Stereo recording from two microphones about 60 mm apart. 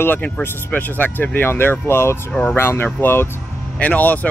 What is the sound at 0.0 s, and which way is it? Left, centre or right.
Speech, left.